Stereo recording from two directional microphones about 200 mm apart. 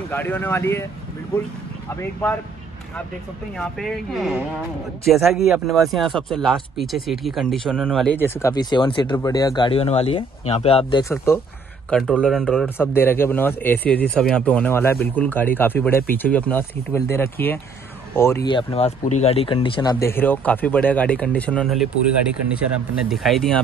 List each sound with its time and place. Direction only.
0.1 s speech: 10° left (ahead or behind)
3.5 s speech: centre (ahead or behind); by 11.1 s 25° left (ahead or behind)
11.1 s speech: 15° left (ahead or behind)
11.9 s speech: 5° right (ahead or behind)
12.6 s speech: 10° left (ahead or behind)
18.5 s speech: 25° left (ahead or behind); by 21.8 s 5° left (ahead or behind)
23.0 s speech: centre (ahead or behind)